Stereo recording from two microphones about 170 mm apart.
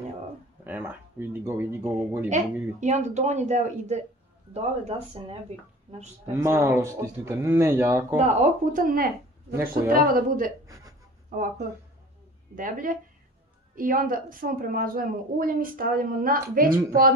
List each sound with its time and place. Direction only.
0.7 s speech: 10° right (ahead or behind)
2.2 s a man's voice: 45° right (ahead or behind)
6.3 s speech: 15° right (ahead or behind)
8.2 s a man's voice: 45° right (ahead or behind)